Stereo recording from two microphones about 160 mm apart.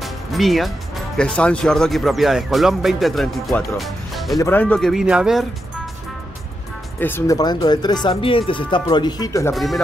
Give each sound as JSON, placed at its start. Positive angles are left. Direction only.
{"t": 0.0, "sound": "speech", "side_deg": 0}
{"t": 4.4, "sound": "speech", "side_deg": 10}
{"t": 7.0, "sound": "speech", "side_deg": 15}
{"t": 9.5, "sound": "speech", "side_deg": 0}